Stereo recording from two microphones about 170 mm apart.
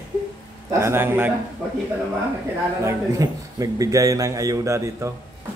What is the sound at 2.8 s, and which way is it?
A man's voice, 20° right (ahead or behind).